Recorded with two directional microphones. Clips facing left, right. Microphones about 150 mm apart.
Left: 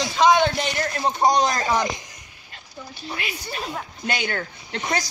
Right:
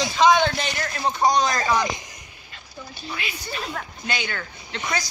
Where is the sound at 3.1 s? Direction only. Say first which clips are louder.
Left 1 dB; 40° left (ahead or behind).